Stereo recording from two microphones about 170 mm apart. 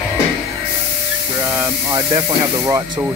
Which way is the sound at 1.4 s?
15° right (ahead or behind).